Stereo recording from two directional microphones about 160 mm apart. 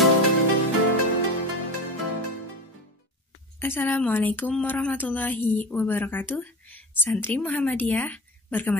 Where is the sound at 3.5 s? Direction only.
15° left (ahead or behind).